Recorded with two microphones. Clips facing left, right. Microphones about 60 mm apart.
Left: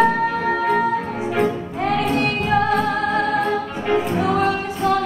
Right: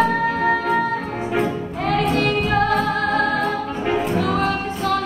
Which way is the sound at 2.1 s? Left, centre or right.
Left.